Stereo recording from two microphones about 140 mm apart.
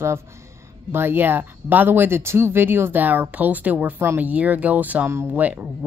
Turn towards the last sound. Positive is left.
turn(degrees=-10)  # may be behind; listen again after turning